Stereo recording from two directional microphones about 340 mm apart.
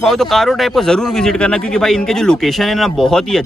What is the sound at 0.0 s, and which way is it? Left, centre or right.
Speech, centre.